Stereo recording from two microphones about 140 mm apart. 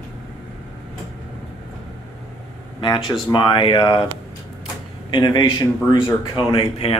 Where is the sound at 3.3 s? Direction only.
35° left (ahead or behind).